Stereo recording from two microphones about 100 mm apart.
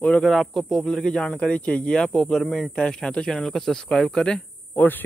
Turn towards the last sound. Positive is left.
turn(degrees=20)  # may be behind; listen again after turning